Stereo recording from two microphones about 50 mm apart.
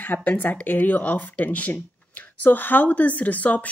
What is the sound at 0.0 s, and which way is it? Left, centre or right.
Speech, left.